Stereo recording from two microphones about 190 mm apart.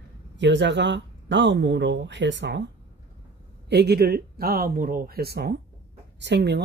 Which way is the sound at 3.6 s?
60° right (ahead or behind).